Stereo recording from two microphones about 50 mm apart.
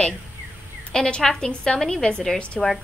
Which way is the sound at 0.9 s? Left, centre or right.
Centre.